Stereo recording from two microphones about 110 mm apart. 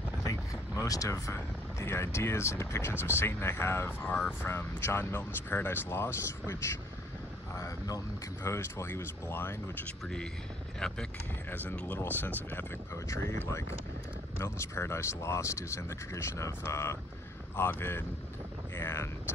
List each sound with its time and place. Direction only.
0.2 s speech: 30° left (ahead or behind)
10.0 s speech: 5° left (ahead or behind); by 13.2 s 25° left (ahead or behind)
14.4 s speech: 25° left (ahead or behind)